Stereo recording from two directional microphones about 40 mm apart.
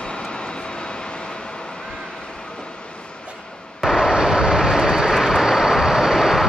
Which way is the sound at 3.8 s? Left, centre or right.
Centre.